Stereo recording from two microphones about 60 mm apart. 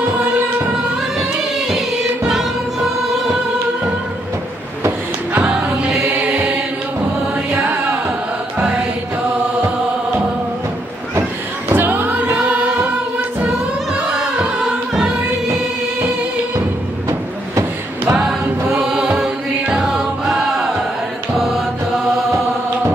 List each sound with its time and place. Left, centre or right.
2.2 s music: centre
5.3 s music: right
6.2 s chant: right
7.5 s music: right
8.5 s music: centre
11.7 s music: right
12.4 s music: centre
18.1 s music: centre
19.7 s chant: centre